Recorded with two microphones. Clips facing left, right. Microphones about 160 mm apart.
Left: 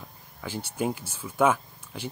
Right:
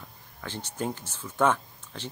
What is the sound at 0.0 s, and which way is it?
Speech, 10° left (ahead or behind).